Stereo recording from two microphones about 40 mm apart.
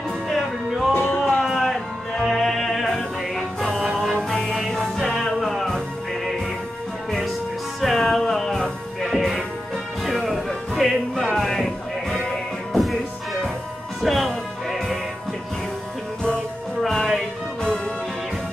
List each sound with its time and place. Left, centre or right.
0.3 s music: centre
0.9 s music: left
1.5 s music: centre
2.9 s music: centre
7.8 s music: centre
12.7 s music: centre
16.8 s music: centre